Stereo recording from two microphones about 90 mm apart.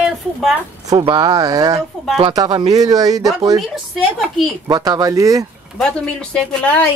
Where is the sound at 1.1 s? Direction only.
45° right (ahead or behind).